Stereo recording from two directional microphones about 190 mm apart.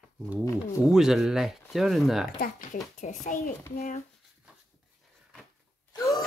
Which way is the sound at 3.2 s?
45° left (ahead or behind).